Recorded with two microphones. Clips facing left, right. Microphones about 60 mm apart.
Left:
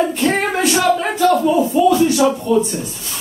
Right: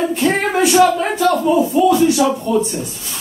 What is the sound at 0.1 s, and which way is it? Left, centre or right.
Speech, centre.